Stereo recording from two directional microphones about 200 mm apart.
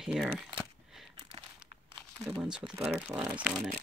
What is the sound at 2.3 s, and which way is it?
Speech, 5° right (ahead or behind).